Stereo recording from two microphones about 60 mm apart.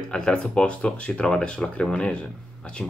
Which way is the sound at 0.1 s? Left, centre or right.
Centre.